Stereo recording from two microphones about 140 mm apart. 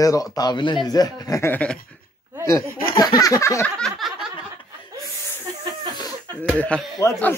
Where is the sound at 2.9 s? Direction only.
30° left (ahead or behind).